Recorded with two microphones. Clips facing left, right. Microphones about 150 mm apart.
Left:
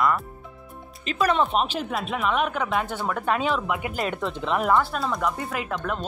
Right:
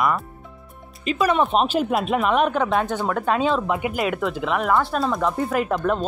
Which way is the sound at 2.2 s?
40° right (ahead or behind).